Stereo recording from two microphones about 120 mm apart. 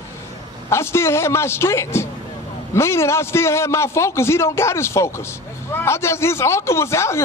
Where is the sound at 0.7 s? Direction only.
20° left (ahead or behind).